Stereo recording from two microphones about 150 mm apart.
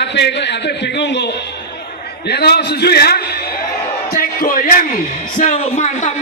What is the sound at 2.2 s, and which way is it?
A man's voice, 90° left.